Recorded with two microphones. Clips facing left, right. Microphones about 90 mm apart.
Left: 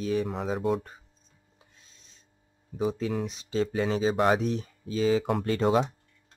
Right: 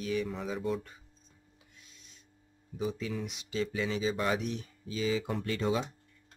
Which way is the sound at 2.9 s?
55° left (ahead or behind).